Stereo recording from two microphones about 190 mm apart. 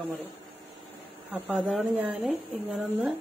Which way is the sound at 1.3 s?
5° right (ahead or behind).